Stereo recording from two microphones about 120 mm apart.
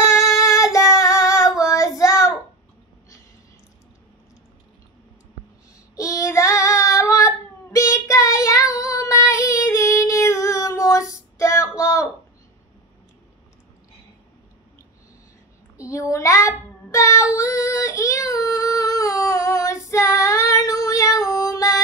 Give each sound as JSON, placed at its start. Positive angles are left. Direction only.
{"t": 0.4, "sound": "child singing", "side_deg": 25}
{"t": 5.9, "sound": "child singing", "side_deg": 25}
{"t": 15.8, "sound": "child singing", "side_deg": 25}